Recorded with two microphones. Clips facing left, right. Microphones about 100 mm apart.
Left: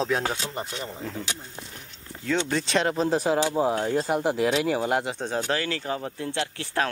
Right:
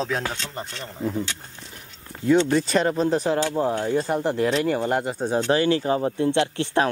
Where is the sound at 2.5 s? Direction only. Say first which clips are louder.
Right 4 dB; 5° right (ahead or behind).